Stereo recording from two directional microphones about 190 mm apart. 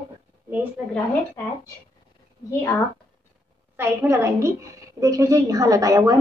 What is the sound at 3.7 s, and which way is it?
A woman's voice, 15° right (ahead or behind).